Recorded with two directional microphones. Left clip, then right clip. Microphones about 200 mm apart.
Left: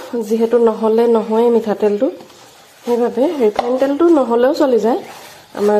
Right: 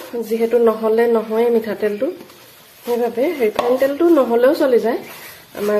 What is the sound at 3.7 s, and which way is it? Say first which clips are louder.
Speech: even; 10° left (ahead or behind).